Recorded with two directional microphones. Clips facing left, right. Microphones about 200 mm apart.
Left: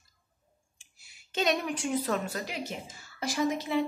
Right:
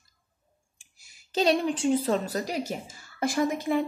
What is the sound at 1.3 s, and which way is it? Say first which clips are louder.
A woman's voice: right 5 dB; 30° right (ahead or behind).